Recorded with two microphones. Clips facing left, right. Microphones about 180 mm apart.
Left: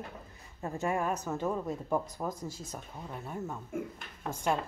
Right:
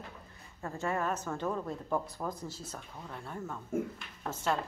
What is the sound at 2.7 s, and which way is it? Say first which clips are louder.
Speech: left 2 dB; 10° left (ahead or behind).